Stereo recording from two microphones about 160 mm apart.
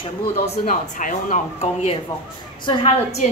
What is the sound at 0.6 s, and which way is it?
A woman's voice, 55° left (ahead or behind).